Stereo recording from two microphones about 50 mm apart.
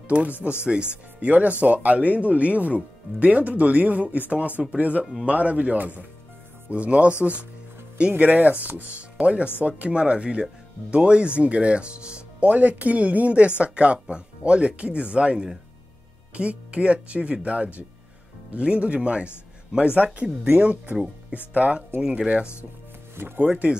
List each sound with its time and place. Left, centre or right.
0.1 s speech: right
1.3 s speech: right
23.1 s speech: right
23.4 s speech: right